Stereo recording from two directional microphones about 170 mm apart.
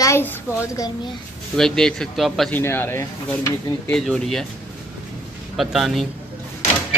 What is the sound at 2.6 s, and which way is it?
A man's voice, 15° left (ahead or behind).